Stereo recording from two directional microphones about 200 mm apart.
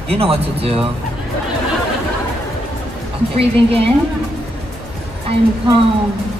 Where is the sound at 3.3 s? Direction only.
30° right (ahead or behind).